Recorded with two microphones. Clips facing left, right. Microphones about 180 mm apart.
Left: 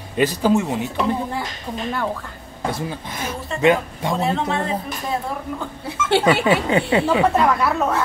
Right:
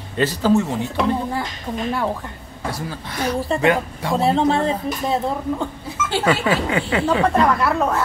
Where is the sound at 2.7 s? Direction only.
20° left (ahead or behind).